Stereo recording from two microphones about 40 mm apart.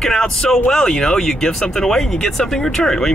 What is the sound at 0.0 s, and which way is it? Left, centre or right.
Speech, centre.